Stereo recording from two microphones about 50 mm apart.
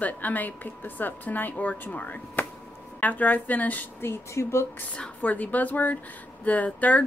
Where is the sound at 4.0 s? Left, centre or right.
Left.